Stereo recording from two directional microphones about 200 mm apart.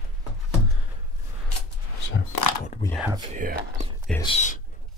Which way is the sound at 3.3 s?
40° right (ahead or behind).